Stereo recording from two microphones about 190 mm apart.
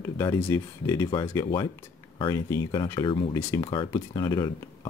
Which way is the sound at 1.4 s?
25° left (ahead or behind).